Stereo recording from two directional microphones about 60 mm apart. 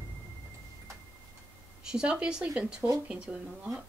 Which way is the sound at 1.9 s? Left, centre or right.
Centre.